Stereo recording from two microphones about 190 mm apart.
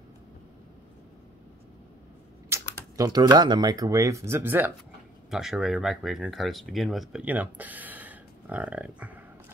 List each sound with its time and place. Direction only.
2.5 s speech: 20° right (ahead or behind)